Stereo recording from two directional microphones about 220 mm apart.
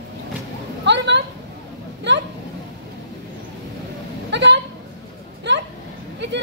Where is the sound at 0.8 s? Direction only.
50° right (ahead or behind).